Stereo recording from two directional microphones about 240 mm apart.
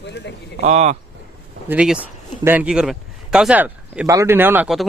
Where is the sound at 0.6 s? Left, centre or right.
Right.